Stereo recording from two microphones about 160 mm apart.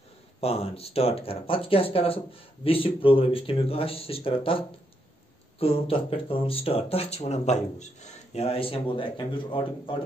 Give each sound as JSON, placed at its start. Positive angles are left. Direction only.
{"t": 0.4, "sound": "speech", "side_deg": 40}